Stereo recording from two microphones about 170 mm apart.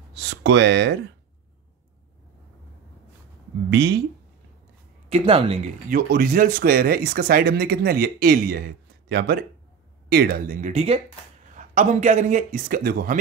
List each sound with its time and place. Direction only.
0.1 s speech: 90° right
3.7 s speech: 85° right
5.1 s speech: 35° right (ahead or behind)
5.9 s speech: 55° right (ahead or behind)
10.7 s a man's voice: 40° right (ahead or behind); by 13.2 s 55° right (ahead or behind)